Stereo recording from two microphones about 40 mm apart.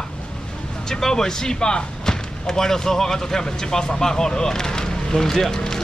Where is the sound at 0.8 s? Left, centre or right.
Centre.